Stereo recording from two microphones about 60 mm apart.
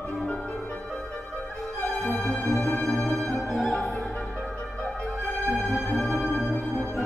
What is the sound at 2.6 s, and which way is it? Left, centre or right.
Music, left.